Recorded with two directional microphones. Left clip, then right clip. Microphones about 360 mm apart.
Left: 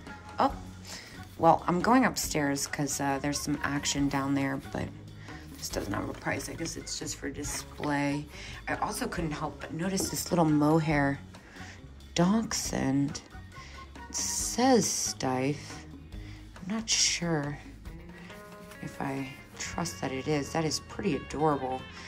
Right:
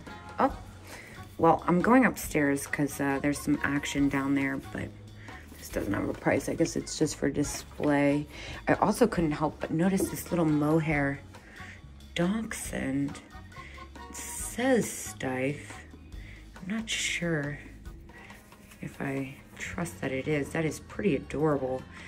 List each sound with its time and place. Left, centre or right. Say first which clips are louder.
0.4 s speech: even; centre
12.2 s speech: left 3 dB; centre
14.1 s speech: left 6 dB; centre
16.6 s speech: left 3 dB; centre
18.9 s speech: right 1 dB; centre